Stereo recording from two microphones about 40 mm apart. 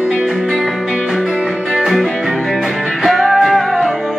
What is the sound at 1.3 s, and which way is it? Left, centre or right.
Music, right.